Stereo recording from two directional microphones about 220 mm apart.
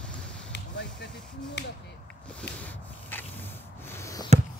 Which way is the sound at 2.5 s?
5° left (ahead or behind).